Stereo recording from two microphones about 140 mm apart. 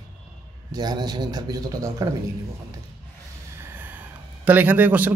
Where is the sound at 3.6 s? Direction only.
15° right (ahead or behind).